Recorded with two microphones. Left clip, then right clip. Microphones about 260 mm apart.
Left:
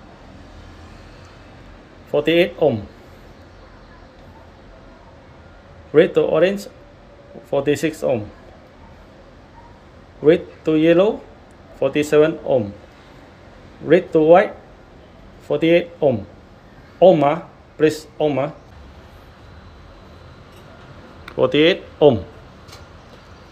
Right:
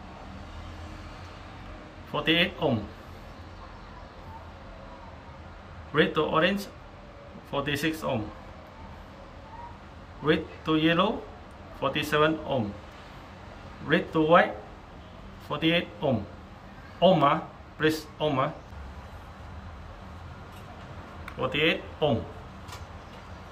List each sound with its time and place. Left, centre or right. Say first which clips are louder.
2.1 s speech: left 9 dB; centre
5.9 s speech: left 10 dB; centre
10.2 s speech: left 11 dB; centre
13.8 s speech: left 11 dB; centre
15.5 s speech: left 11 dB; centre
17.0 s speech: left 9 dB; centre
21.3 s speech: left 11 dB; centre